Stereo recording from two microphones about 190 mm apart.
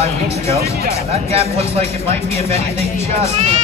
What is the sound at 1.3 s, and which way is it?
Speech, 30° right (ahead or behind).